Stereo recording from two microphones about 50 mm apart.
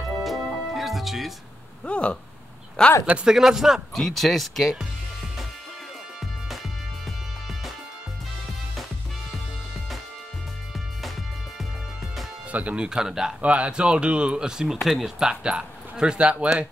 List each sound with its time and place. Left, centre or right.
0.2 s music: centre
1.9 s speech: left
3.3 s speech: centre
3.9 s speech: centre
7.1 s music: centre
11.0 s music: centre
12.4 s speech: right; by 13.3 s centre
13.4 s speech: right